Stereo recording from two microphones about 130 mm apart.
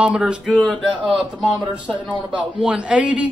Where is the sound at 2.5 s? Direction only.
5° right (ahead or behind).